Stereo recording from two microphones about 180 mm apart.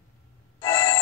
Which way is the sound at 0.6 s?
15° left (ahead or behind).